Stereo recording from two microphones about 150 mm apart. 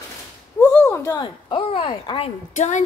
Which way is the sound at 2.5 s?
55° left (ahead or behind).